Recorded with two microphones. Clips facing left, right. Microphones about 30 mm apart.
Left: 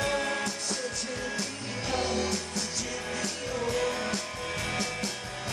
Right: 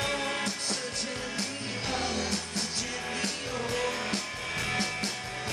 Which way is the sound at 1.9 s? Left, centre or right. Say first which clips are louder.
Left 3 dB; centre.